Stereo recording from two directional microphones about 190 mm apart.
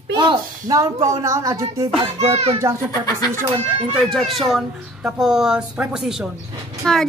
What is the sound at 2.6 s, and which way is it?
Speech, 15° right (ahead or behind).